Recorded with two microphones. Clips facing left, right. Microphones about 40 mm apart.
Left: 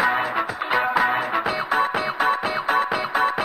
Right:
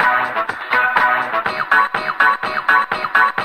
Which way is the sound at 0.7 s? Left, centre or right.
Right.